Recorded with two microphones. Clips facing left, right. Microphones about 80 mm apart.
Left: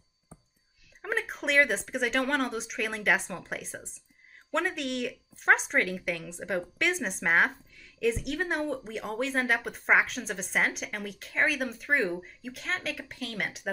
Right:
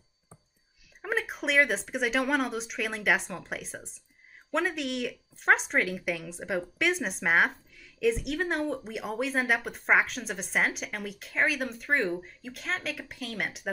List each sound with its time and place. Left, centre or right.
1.0 s speech: centre